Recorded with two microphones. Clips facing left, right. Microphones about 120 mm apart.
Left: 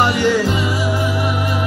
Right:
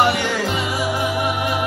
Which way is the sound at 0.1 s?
55° right (ahead or behind).